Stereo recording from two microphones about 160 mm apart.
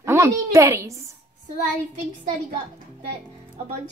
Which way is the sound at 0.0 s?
20° right (ahead or behind).